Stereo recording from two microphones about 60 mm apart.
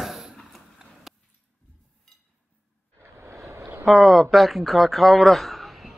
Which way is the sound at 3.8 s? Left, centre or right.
Centre.